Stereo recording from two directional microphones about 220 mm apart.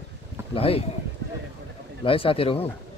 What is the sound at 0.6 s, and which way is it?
Speech, 25° left (ahead or behind).